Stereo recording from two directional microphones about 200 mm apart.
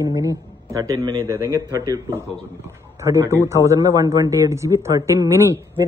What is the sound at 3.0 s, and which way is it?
A man's voice, 15° right (ahead or behind).